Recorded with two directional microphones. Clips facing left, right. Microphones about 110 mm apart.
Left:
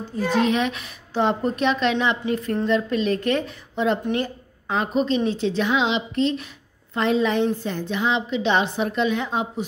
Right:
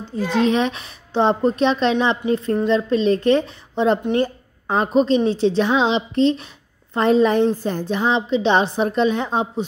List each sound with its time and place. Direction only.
0.4 s a woman's voice: 30° right (ahead or behind)